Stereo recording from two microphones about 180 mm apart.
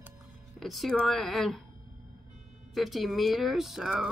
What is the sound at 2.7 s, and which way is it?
Speech, centre (ahead or behind).